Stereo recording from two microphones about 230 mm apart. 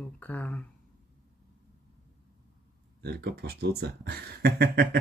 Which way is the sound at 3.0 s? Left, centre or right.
Right.